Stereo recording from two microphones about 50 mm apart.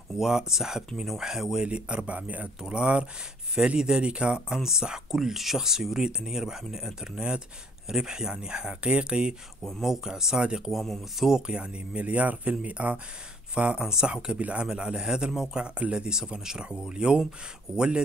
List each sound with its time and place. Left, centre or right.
0.1 s speech: centre; by 2.5 s right
2.7 s speech: centre
9.6 s speech: centre
9.8 s speech: centre
10.7 s speech: centre